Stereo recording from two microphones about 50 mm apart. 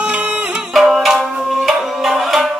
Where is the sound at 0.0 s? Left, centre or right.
Right.